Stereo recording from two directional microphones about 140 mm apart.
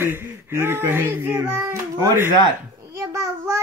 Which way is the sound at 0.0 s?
15° right (ahead or behind).